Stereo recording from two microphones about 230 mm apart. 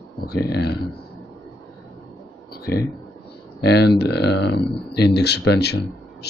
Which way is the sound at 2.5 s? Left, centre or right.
Left.